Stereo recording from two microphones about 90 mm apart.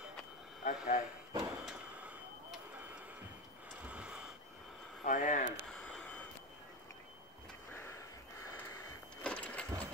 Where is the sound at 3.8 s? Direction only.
10° right (ahead or behind).